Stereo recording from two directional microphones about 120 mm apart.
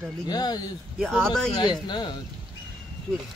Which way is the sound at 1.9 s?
40° left (ahead or behind).